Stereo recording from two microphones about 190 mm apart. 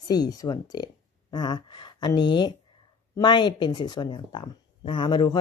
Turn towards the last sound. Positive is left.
turn(degrees=25)  # may be behind; listen again after turning